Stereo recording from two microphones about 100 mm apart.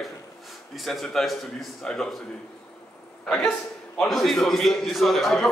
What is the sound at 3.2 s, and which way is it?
A man's voice, 5° left (ahead or behind).